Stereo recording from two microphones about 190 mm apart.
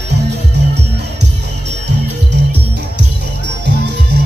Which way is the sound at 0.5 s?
60° right (ahead or behind).